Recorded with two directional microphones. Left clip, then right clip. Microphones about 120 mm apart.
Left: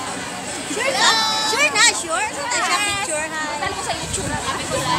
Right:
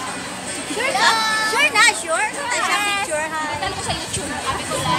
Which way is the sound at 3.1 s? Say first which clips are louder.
Right 1 dB; 15° right (ahead or behind).